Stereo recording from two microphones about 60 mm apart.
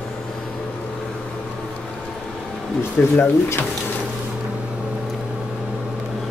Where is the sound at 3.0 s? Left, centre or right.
Left.